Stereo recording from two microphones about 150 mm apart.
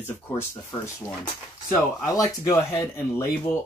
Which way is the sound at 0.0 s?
15° left (ahead or behind).